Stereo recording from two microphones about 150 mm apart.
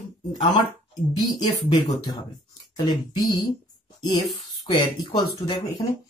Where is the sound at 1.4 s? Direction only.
30° left (ahead or behind).